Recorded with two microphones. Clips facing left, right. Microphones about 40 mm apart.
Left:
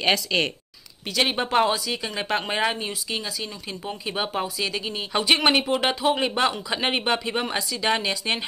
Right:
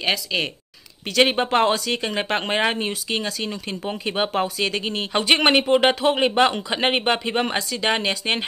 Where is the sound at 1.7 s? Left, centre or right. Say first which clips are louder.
Right 4 dB; right.